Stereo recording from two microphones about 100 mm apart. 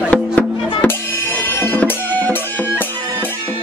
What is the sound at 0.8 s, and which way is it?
Music, 20° left (ahead or behind).